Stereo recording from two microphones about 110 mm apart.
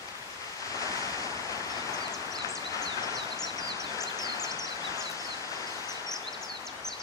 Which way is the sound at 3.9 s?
35° left (ahead or behind).